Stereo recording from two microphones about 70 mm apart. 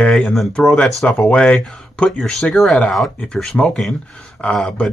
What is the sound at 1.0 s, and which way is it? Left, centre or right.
Speech, left.